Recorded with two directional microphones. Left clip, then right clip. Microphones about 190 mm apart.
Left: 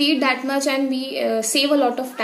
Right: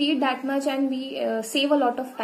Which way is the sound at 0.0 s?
5° left (ahead or behind).